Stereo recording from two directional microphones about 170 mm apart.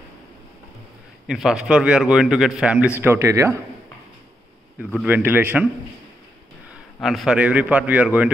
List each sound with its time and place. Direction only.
1.2 s a man's voice: 5° right (ahead or behind)
4.7 s a man's voice: 10° right (ahead or behind)
7.0 s a man's voice: centre (ahead or behind)